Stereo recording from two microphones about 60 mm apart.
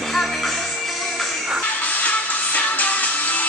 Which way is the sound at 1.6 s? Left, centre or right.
Left.